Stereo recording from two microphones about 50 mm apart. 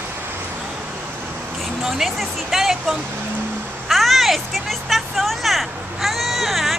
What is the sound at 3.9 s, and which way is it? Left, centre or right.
Vehicle, centre.